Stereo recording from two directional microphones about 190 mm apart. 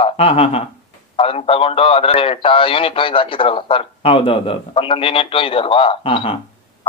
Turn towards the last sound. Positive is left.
turn(degrees=25)  # may be behind; listen again after turning